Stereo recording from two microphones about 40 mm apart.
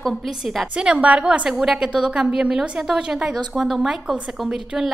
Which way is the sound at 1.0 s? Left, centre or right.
Right.